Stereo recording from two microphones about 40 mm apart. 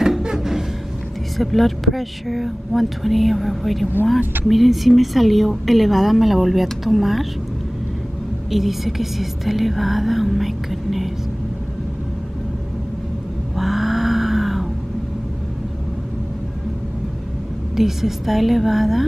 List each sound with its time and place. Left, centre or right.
0.2 s music: centre
1.4 s a woman's voice: centre
8.5 s a woman's voice: centre
13.6 s a sound: centre
17.7 s a woman's voice: centre